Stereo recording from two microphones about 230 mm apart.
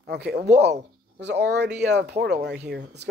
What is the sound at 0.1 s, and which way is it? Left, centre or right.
Speech, right.